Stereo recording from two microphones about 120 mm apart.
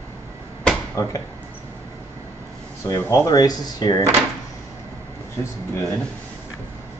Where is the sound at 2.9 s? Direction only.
20° left (ahead or behind).